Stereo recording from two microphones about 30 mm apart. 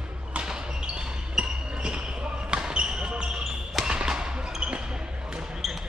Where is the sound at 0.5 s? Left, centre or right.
Right.